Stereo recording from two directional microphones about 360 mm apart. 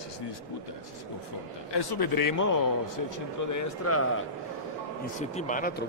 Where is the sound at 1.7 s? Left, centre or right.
Left.